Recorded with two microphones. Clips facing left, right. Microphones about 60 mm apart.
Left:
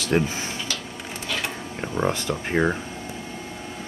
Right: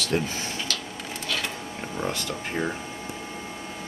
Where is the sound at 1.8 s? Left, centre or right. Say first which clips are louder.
Left 6 dB; left.